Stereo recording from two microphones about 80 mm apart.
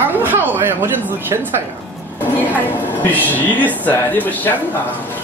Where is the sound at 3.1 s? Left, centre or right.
Left.